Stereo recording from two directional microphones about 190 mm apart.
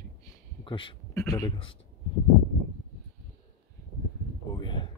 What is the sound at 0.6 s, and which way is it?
Speech, 25° left (ahead or behind).